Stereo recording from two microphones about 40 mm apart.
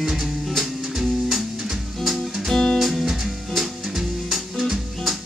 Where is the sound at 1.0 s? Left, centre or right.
Centre.